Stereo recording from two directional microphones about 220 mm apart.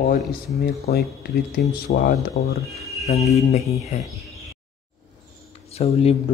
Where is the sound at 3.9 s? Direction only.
30° left (ahead or behind).